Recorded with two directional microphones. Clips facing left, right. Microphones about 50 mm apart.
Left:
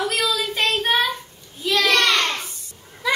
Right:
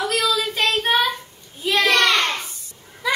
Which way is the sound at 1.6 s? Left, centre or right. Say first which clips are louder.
Right 1 dB; right.